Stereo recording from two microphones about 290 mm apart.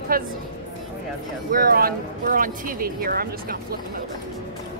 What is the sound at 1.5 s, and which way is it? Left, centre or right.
Speech, right.